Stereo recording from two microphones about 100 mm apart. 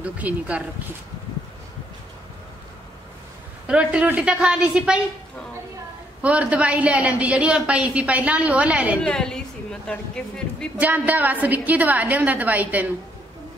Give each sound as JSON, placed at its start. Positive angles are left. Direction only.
{"t": 0.0, "sound": "a woman's voice", "side_deg": -15}
{"t": 3.6, "sound": "a woman's voice", "side_deg": -10}
{"t": 6.2, "sound": "a woman's voice", "side_deg": -15}
{"t": 9.0, "sound": "a woman's voice", "side_deg": 5}
{"t": 10.8, "sound": "a woman's voice", "side_deg": -15}